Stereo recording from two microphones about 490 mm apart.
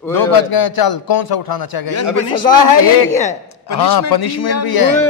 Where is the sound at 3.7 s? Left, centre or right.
Left.